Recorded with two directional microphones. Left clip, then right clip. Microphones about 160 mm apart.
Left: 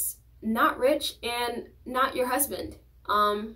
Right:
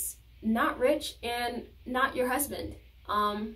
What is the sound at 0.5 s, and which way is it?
A woman's voice, 5° right (ahead or behind).